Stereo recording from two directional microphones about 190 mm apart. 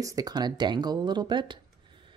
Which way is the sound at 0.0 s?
20° right (ahead or behind).